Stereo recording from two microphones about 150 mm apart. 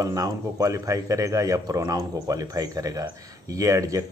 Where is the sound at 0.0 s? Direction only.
25° right (ahead or behind).